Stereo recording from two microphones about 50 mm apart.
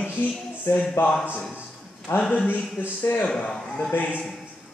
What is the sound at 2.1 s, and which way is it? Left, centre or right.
Speech, left.